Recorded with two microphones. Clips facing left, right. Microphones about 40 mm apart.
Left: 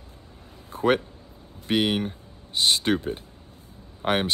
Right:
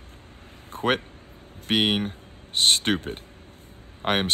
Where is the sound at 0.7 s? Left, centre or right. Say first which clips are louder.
Left 2 dB; right.